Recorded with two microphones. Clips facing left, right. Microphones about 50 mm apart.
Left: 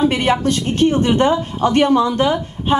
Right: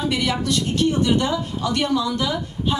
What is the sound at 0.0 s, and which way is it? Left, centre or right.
A woman's voice, left.